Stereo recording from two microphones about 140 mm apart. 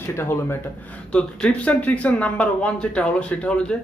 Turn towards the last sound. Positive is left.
turn(degrees=10)  # may be behind; listen again after turning